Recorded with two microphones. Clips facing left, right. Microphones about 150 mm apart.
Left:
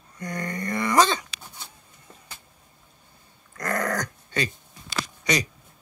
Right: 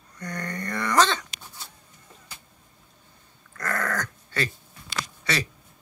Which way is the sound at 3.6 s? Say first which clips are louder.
Left 2 dB; 20° left (ahead or behind).